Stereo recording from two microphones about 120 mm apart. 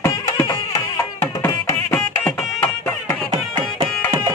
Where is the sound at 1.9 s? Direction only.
15° left (ahead or behind).